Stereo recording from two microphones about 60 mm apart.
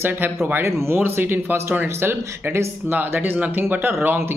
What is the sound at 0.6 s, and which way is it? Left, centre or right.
Speech, right.